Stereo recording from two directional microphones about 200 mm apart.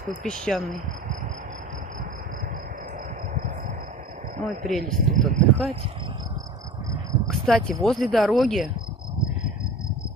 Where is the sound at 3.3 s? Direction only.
40° right (ahead or behind).